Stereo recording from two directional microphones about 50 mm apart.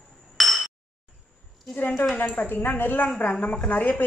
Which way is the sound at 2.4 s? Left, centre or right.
Left.